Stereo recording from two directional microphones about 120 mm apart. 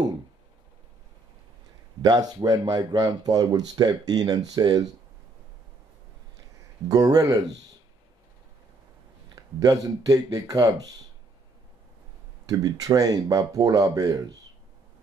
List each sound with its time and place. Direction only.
2.0 s speech: 35° right (ahead or behind)
6.9 s speech: 30° right (ahead or behind)
9.3 s speech: 30° right (ahead or behind)
12.4 s speech: 30° right (ahead or behind)